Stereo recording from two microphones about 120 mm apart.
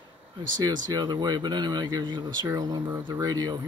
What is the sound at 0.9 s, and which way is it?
Speech, 35° right (ahead or behind).